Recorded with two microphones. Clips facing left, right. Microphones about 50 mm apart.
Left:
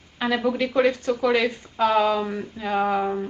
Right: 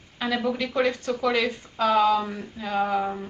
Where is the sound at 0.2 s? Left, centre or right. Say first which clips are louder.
Left 3 dB; centre.